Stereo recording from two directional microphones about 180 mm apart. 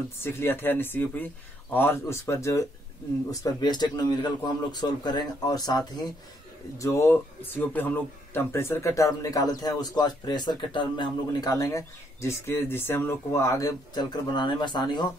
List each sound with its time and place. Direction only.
0.2 s a man's voice: 10° left (ahead or behind)